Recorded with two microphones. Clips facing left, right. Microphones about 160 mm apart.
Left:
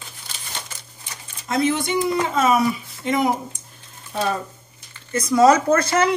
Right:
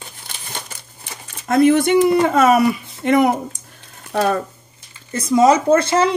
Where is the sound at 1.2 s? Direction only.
55° right (ahead or behind).